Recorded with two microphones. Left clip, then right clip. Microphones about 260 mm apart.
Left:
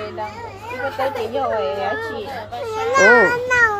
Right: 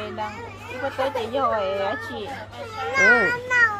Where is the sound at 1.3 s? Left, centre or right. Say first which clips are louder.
Left 1 dB; right.